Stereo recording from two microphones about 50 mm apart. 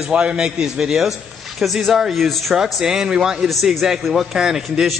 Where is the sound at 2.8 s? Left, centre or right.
Centre.